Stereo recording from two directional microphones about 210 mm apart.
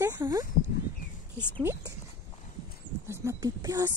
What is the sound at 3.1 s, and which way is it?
Speech, 15° right (ahead or behind).